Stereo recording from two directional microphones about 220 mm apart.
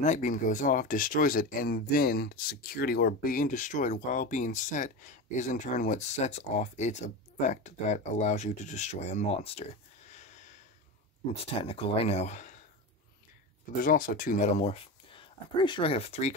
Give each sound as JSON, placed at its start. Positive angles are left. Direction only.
{"t": 0.0, "sound": "speech", "side_deg": 35}
{"t": 11.3, "sound": "speech", "side_deg": 25}
{"t": 13.8, "sound": "speech", "side_deg": 40}